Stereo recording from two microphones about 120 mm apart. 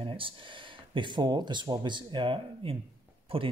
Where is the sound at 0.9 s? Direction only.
40° right (ahead or behind).